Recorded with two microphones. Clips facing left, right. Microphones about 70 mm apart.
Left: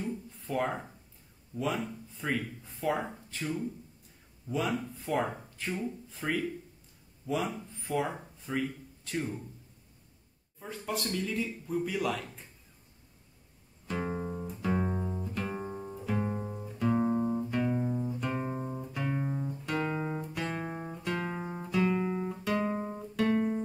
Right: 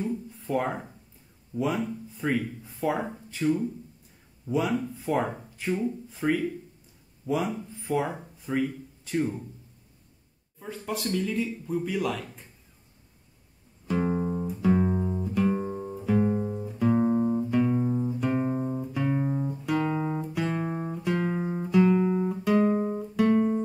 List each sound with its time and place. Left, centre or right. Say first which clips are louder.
0.3 s a sound: right 2 dB; centre
1.6 s speech: right 5 dB; centre
10.6 s speech: right 3 dB; centre
13.8 s music: right 7 dB; centre
15.6 s music: right 6 dB; centre
19.9 s guitar: right 5 dB; centre
20.2 s music: right 6 dB; centre